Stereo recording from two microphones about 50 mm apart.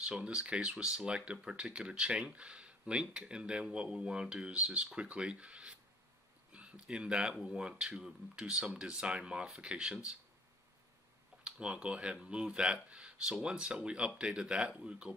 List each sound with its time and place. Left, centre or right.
0.0 s speech: centre
11.4 s speech: centre